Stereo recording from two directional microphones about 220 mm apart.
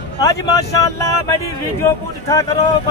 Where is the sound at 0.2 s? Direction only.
15° left (ahead or behind).